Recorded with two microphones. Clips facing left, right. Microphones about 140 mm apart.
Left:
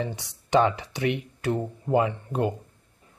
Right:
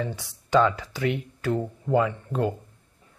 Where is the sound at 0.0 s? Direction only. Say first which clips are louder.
Even; 20° left (ahead or behind).